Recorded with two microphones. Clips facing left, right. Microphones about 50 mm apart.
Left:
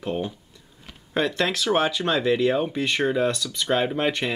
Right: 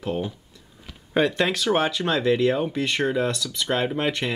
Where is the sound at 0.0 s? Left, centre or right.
Centre.